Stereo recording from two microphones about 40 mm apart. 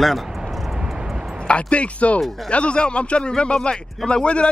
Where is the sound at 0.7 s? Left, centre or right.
Centre.